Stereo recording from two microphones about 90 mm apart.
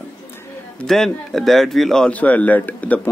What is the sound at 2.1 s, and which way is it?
Speech, 15° left (ahead or behind).